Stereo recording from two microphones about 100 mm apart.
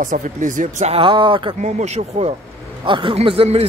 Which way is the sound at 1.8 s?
90° right.